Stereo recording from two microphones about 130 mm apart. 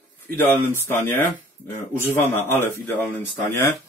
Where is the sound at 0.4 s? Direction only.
20° left (ahead or behind).